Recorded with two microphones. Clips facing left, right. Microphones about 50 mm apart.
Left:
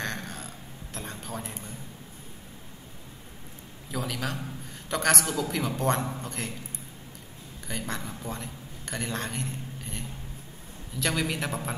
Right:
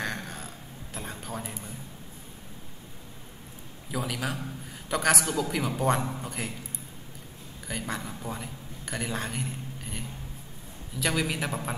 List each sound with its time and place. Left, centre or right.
0.0 s a sound: centre
3.9 s a man's voice: centre
7.6 s a man's voice: centre